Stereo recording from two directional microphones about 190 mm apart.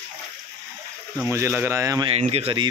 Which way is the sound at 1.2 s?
15° right (ahead or behind).